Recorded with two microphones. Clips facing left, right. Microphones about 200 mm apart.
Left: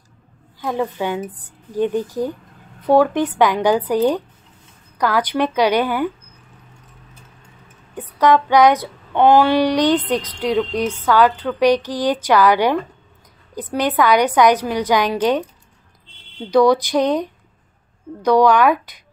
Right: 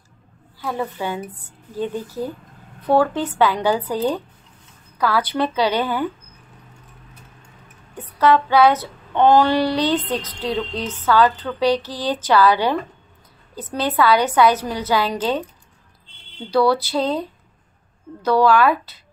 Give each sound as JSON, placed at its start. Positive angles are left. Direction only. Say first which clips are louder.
{"t": 0.6, "sound": "female singing", "louder": "left 4 dB", "side_deg": 15}
{"t": 7.9, "sound": "female singing", "louder": "left 1 dB", "side_deg": 15}
{"t": 16.4, "sound": "female singing", "louder": "left 4 dB", "side_deg": 15}